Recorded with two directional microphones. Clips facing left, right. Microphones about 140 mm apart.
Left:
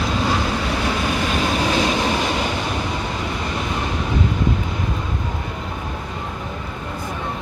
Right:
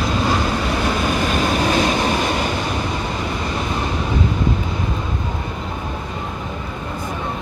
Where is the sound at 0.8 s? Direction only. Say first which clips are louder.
Right 2 dB; 45° right (ahead or behind).